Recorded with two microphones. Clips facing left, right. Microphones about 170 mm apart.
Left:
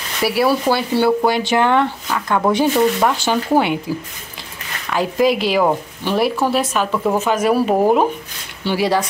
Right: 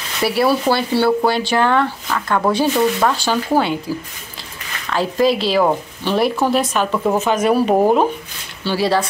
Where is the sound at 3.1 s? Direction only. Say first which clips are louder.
Left 1 dB; 20° left (ahead or behind).